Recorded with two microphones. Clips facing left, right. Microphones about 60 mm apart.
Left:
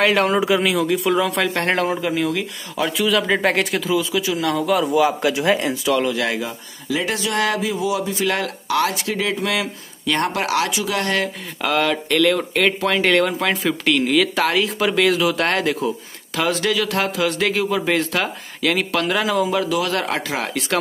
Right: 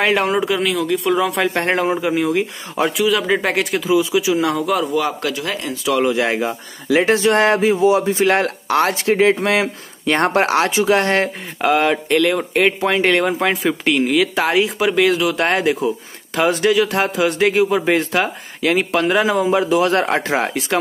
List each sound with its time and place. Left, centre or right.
0.0 s speech: centre
1.4 s speech: centre
3.0 s speech: centre
3.9 s speech: centre
4.6 s speech: centre
5.3 s speech: centre
6.0 s speech: right
11.6 s speech: right
14.8 s speech: centre; by 20.5 s right